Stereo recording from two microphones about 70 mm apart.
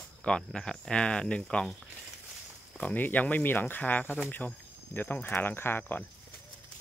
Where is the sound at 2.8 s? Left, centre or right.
Left.